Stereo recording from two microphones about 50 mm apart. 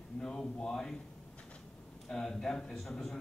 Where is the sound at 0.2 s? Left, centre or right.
Centre.